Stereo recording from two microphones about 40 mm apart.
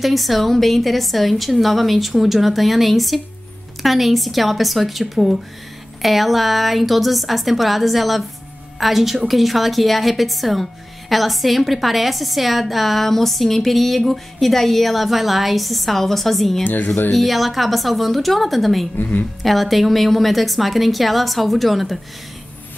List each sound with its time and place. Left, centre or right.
0.0 s a woman's voice: centre
16.6 s speech: left
17.1 s a woman's voice: centre
18.9 s speech: left
19.4 s a woman's voice: centre